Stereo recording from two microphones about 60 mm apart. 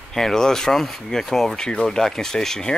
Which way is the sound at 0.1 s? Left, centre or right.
Centre.